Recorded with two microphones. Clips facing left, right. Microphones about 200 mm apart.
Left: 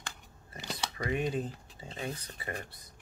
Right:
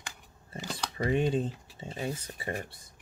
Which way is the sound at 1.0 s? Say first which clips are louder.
Right 5 dB; 30° right (ahead or behind).